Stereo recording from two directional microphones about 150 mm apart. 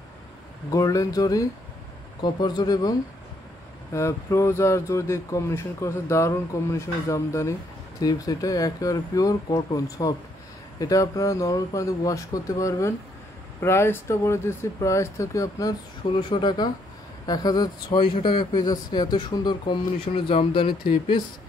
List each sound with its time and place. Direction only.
0.7 s speech: 20° left (ahead or behind)